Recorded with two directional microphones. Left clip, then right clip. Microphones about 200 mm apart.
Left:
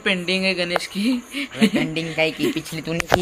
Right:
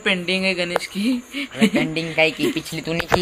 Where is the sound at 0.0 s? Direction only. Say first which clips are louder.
Right 1 dB; centre (ahead or behind).